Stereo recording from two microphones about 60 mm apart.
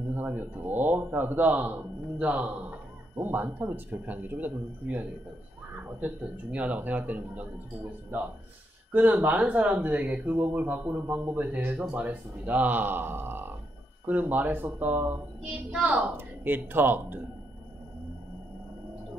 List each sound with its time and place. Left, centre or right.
0.1 s speech: right
15.7 s a woman's voice: centre
16.0 s speech: right